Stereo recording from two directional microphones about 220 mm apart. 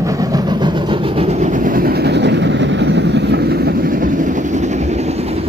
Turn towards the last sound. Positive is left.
turn(degrees=-30)  # may be behind; listen again after turning